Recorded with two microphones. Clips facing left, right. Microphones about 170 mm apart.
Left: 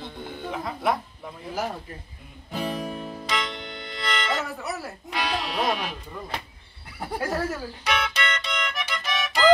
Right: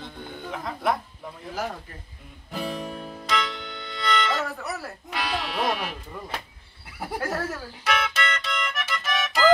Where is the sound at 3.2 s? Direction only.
Centre (ahead or behind).